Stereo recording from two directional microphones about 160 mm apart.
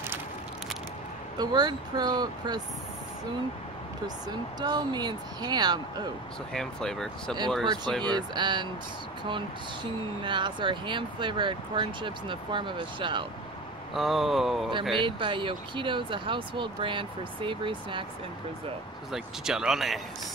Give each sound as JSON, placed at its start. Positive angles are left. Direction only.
{"t": 1.4, "sound": "speech", "side_deg": -25}
{"t": 4.6, "sound": "speech", "side_deg": -25}
{"t": 6.5, "sound": "speech", "side_deg": 5}
{"t": 7.6, "sound": "speech", "side_deg": -25}
{"t": 10.2, "sound": "speech", "side_deg": -30}
{"t": 13.9, "sound": "speech", "side_deg": 0}
{"t": 15.0, "sound": "speech", "side_deg": -30}
{"t": 19.1, "sound": "speech", "side_deg": -5}